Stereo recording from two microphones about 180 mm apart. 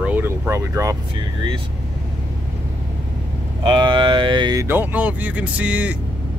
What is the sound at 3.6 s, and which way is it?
Speech, 25° right (ahead or behind).